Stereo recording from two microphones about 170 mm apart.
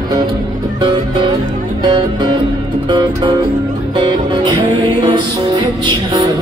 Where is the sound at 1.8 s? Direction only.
25° right (ahead or behind).